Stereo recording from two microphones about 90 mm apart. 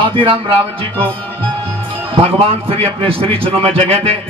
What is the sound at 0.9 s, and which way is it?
Speech, 15° left (ahead or behind).